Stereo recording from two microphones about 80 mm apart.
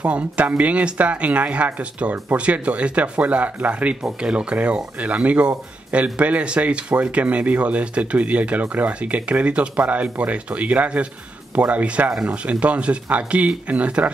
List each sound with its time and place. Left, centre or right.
0.0 s speech: centre